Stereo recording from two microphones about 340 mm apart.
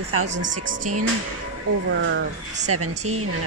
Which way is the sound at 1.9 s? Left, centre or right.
Right.